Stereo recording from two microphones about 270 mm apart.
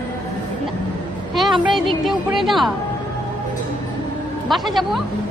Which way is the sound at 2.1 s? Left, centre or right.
Centre.